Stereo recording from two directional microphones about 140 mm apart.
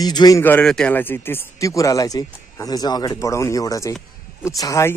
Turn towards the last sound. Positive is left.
turn(degrees=25)  # may be behind; listen again after turning